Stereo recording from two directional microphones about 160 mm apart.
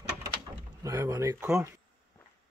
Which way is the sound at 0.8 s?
20° right (ahead or behind).